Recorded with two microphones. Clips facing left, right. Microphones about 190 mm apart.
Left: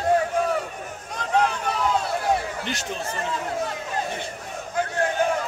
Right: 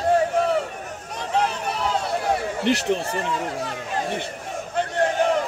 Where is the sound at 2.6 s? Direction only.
70° right (ahead or behind).